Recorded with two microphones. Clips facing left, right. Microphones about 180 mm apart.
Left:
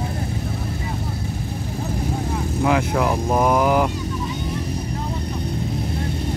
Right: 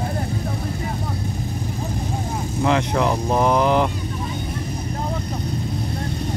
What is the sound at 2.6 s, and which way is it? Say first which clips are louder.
Speech: even; 5° left (ahead or behind).